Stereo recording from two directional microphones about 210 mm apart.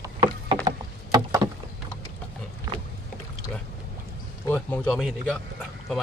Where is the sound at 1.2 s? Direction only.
15° right (ahead or behind).